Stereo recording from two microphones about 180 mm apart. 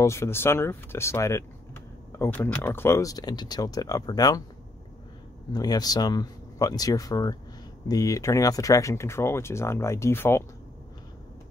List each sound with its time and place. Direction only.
0.0 s speech: 15° left (ahead or behind)
5.5 s speech: 20° left (ahead or behind)